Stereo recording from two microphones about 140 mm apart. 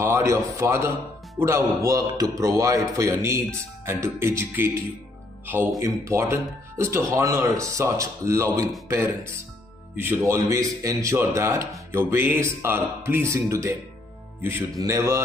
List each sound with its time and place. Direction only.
0.0 s a man's voice: 20° right (ahead or behind)
5.8 s speech: 25° right (ahead or behind)
14.8 s speech: 20° right (ahead or behind)